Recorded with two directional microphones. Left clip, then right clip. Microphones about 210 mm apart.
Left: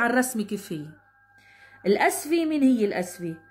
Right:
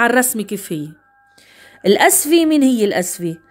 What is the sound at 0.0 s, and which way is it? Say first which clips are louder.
A woman's voice: right 9 dB; 40° right (ahead or behind).